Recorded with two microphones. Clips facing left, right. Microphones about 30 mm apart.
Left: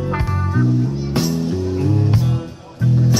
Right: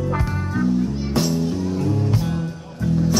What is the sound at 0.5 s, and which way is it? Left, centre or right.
Music, centre.